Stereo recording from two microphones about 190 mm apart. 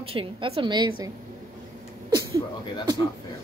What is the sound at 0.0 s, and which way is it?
Speech, 30° right (ahead or behind).